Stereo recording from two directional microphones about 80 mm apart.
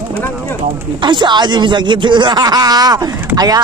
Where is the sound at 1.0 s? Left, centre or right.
Right.